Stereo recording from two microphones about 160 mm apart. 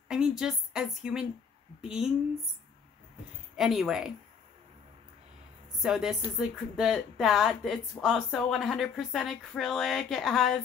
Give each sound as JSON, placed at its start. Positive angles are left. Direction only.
{"t": 0.1, "sound": "a woman's voice", "side_deg": -5}
{"t": 3.5, "sound": "speech", "side_deg": 0}
{"t": 5.8, "sound": "speech", "side_deg": -5}